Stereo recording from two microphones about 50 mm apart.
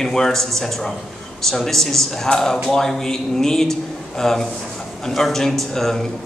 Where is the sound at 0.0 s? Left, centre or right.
Centre.